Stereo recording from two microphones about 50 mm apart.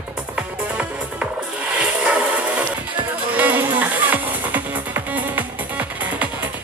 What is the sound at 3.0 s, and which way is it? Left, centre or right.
Music, right.